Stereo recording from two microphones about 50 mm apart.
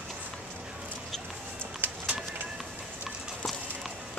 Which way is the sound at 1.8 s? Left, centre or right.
Right.